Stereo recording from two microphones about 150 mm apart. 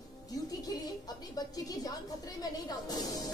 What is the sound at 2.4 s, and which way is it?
Music, 25° left (ahead or behind).